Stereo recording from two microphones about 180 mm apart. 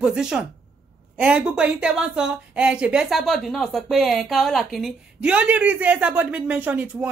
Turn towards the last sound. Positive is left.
turn(degrees=-5)  # may be behind; listen again after turning